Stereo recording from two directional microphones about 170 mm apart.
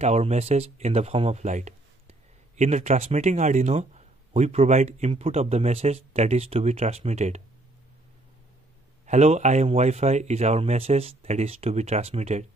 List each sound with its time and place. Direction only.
0.0 s speech: 40° right (ahead or behind)
9.0 s speech: 45° right (ahead or behind)